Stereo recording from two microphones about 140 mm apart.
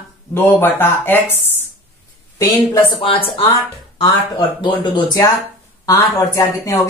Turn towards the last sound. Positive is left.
turn(degrees=20)  # may be behind; listen again after turning